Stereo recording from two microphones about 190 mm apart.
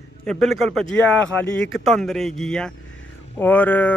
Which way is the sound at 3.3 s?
10° left (ahead or behind).